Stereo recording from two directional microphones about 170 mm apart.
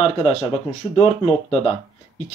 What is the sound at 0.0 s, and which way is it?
Speech, 40° left (ahead or behind).